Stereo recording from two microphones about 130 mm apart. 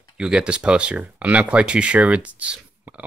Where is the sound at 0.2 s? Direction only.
5° right (ahead or behind).